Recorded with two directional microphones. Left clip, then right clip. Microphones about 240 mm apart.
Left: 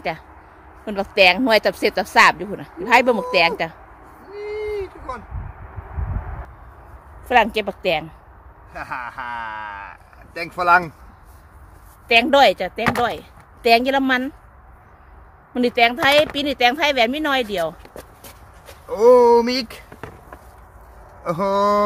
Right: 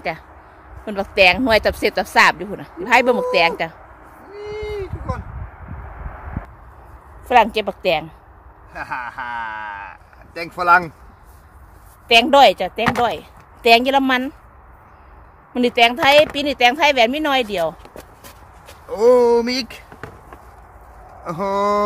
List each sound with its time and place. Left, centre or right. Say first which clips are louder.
0.8 s speech: right 1 dB; centre
4.3 s a sound: left 1 dB; centre
7.2 s speech: right 2 dB; centre
12.1 s speech: right 3 dB; centre
15.5 s speech: right 2 dB; centre
18.9 s speech: left 1 dB; centre
21.2 s speech: left 1 dB; left